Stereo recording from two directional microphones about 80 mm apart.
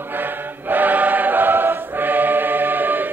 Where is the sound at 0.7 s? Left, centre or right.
Right.